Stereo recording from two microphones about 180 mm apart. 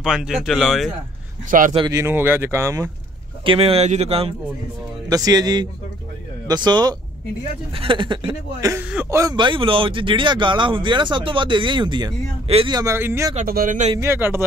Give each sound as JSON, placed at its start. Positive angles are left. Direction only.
{"t": 0.0, "sound": "speech", "side_deg": -5}
{"t": 1.5, "sound": "a man's voice", "side_deg": -45}
{"t": 1.9, "sound": "speech", "side_deg": -15}
{"t": 3.4, "sound": "speech", "side_deg": -35}
{"t": 5.1, "sound": "speech", "side_deg": -20}
{"t": 13.4, "sound": "a man's voice", "side_deg": -50}
{"t": 13.9, "sound": "speech", "side_deg": -15}